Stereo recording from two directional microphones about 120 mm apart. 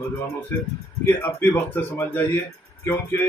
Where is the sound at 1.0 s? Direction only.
20° left (ahead or behind).